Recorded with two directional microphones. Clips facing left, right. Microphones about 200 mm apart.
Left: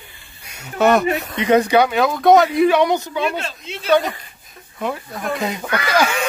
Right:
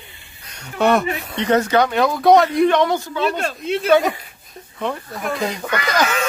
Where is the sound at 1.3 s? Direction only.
10° left (ahead or behind).